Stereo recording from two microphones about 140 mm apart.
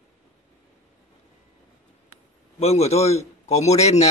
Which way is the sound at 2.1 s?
50° left (ahead or behind).